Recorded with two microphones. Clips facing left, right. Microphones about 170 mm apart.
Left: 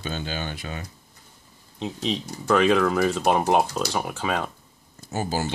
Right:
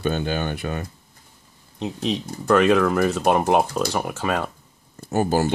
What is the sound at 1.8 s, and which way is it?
Speech, centre (ahead or behind).